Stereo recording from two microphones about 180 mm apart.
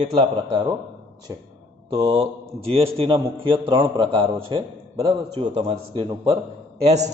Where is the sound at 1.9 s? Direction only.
30° right (ahead or behind).